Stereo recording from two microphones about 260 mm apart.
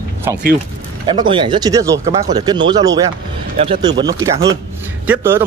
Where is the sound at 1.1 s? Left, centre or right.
Centre.